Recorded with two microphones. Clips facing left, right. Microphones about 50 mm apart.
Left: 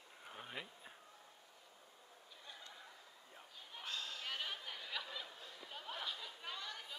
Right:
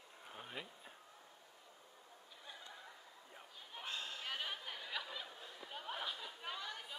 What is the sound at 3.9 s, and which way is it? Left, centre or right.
Bleat, right.